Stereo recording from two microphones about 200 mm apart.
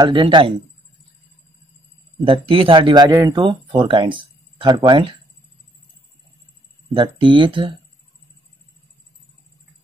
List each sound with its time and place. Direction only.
0.0 s speech: 25° right (ahead or behind)
2.2 s speech: 25° right (ahead or behind)
6.9 s speech: 25° right (ahead or behind)